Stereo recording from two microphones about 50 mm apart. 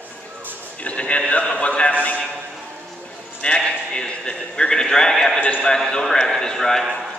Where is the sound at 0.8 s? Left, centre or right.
Left.